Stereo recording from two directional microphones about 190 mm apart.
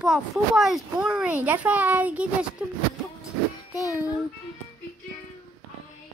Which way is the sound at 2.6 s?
10° right (ahead or behind).